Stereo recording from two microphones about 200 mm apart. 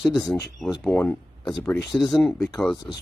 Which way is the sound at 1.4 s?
20° left (ahead or behind).